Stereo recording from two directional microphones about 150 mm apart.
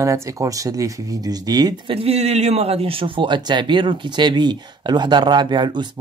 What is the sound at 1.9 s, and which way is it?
A man's voice, 40° right (ahead or behind).